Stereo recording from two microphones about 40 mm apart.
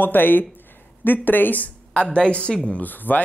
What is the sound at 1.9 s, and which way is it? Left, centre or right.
Speech, left.